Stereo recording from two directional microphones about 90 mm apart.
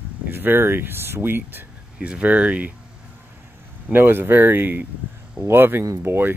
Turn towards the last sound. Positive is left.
turn(degrees=-25)  # may be behind; listen again after turning